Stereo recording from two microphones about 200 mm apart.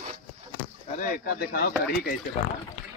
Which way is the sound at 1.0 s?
45° left (ahead or behind).